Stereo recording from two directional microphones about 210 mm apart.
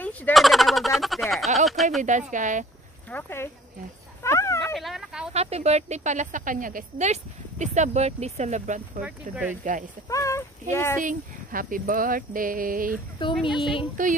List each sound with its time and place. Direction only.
0.0 s speech: 5° left (ahead or behind)
2.0 s speech: 35° right (ahead or behind)
3.1 s speech: 10° left (ahead or behind)
4.2 s dog: 15° left (ahead or behind)
4.6 s dog: centre (ahead or behind)
5.3 s speech: 30° right (ahead or behind)
9.0 s speech: 5° right (ahead or behind)
10.0 s speech: 15° left (ahead or behind)
11.0 s speech: 40° right (ahead or behind)
13.2 s speech: 20° left (ahead or behind)
14.0 s speech: 40° right (ahead or behind)